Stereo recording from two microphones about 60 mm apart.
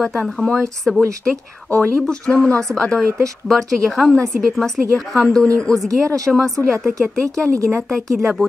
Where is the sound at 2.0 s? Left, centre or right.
Centre.